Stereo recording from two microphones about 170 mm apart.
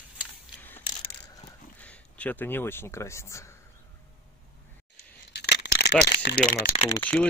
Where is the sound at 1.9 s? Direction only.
10° left (ahead or behind).